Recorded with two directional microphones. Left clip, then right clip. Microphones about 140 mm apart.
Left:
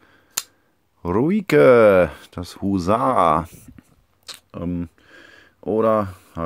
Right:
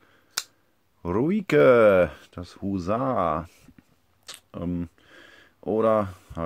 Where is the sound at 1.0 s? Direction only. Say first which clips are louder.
Left 5 dB; 15° left (ahead or behind); by 3.8 s 35° left (ahead or behind).